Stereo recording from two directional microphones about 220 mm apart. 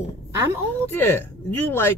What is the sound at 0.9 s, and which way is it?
Speech, 10° left (ahead or behind).